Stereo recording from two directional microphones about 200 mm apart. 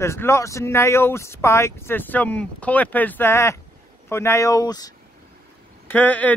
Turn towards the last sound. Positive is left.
turn(degrees=10)  # may be behind; listen again after turning